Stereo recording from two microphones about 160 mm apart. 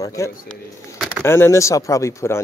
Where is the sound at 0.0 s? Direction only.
20° left (ahead or behind).